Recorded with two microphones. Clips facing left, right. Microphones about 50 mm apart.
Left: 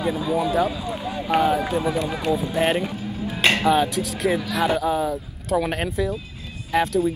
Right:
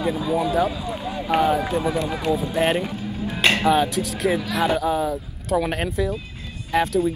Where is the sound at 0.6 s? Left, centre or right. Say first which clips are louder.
Even; centre.